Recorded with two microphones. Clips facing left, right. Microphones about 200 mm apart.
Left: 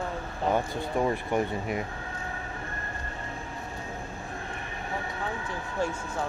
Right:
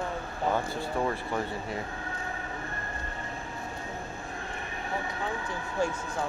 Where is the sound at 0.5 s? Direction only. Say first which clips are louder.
Left 2 dB; 15° left (ahead or behind).